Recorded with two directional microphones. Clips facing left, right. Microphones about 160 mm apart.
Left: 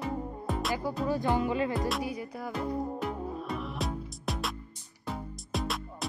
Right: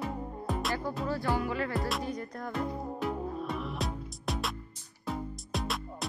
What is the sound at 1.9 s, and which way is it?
Music, 10° left (ahead or behind).